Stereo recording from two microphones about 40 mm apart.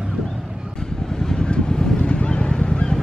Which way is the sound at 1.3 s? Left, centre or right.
Left.